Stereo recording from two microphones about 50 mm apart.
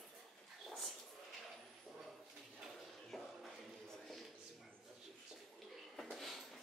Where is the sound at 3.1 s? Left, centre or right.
Centre.